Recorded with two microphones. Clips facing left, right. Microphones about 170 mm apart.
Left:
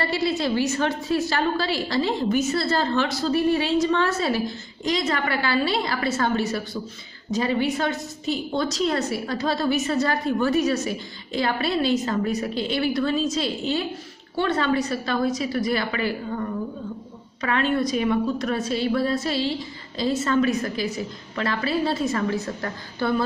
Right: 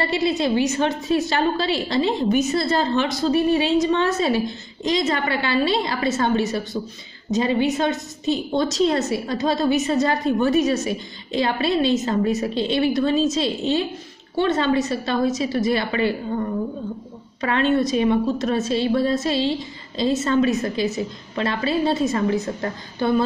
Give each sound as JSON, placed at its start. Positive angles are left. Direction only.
{"t": 0.0, "sound": "a woman's voice", "side_deg": -20}